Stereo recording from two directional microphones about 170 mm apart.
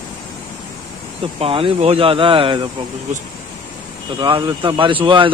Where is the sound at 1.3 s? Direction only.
35° right (ahead or behind).